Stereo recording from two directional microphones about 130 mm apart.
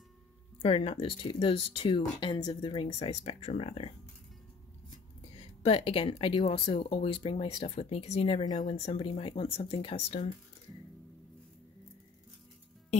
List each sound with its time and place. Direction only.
0.6 s speech: 50° left (ahead or behind)
5.4 s speech: 50° left (ahead or behind)